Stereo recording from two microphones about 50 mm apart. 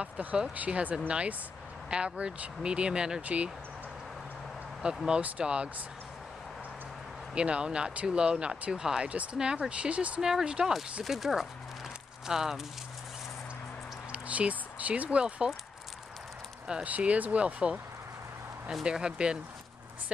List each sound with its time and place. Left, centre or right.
0.0 s speech: right
3.2 s speech: right
4.9 s speech: centre
7.3 s speech: centre
10.2 s speech: centre
14.1 s speech: right
16.8 s speech: right
18.9 s speech: centre